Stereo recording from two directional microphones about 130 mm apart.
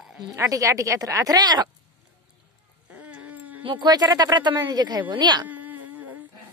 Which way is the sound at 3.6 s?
35° right (ahead or behind).